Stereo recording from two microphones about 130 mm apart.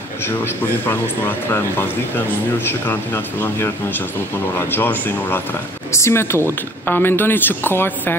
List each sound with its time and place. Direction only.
0.8 s speech: 15° left (ahead or behind)